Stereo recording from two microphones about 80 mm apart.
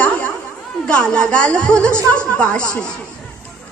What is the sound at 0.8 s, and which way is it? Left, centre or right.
Music, centre.